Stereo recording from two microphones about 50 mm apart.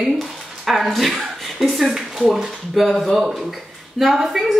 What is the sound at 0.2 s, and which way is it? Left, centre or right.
Speech, centre.